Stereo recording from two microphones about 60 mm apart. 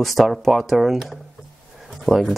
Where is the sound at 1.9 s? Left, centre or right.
Centre.